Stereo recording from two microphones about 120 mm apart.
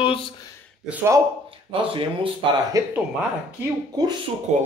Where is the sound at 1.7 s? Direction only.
45° right (ahead or behind).